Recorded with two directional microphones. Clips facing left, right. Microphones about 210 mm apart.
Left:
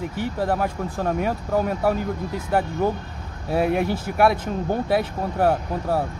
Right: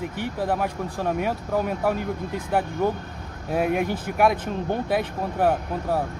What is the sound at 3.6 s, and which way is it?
Speech, 40° left (ahead or behind).